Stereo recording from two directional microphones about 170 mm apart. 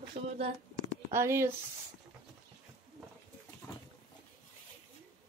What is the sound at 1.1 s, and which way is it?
Speech, 15° right (ahead or behind).